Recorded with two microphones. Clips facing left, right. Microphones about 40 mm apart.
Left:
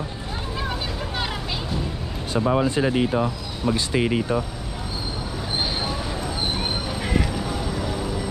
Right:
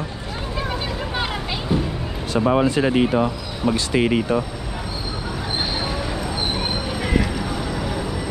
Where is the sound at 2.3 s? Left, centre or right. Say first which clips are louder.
Right 3 dB; right.